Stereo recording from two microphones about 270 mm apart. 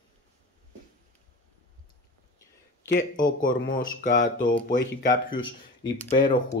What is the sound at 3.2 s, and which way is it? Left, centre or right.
Speech, left.